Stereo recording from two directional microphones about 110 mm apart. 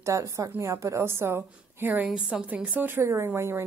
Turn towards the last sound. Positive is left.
turn(degrees=-20)  # may be behind; listen again after turning